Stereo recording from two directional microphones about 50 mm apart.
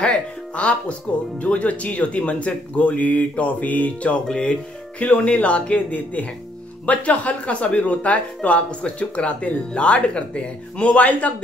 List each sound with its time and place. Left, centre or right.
0.0 s music: left
1.4 s speech: left